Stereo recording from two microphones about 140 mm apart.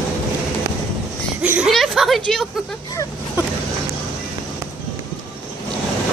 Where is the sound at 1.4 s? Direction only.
5° right (ahead or behind).